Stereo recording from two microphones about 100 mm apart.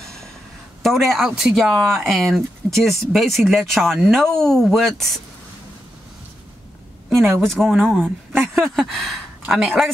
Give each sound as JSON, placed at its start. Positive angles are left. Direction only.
{"t": 0.8, "sound": "speech", "side_deg": 0}
{"t": 7.2, "sound": "speech", "side_deg": -25}
{"t": 7.5, "sound": "speech", "side_deg": 0}
{"t": 7.8, "sound": "speech", "side_deg": -15}
{"t": 8.4, "sound": "speech", "side_deg": 0}